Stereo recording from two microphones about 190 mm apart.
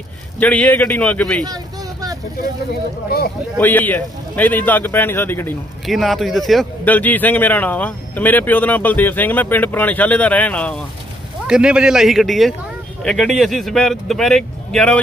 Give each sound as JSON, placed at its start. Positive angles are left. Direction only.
{"t": 0.4, "sound": "a man's voice", "side_deg": 5}
{"t": 1.4, "sound": "vehicle", "side_deg": -20}
{"t": 3.1, "sound": "speech", "side_deg": 55}
{"t": 3.5, "sound": "a man's voice", "side_deg": 10}
{"t": 5.9, "sound": "a man's voice", "side_deg": 0}
{"t": 11.4, "sound": "speech", "side_deg": -5}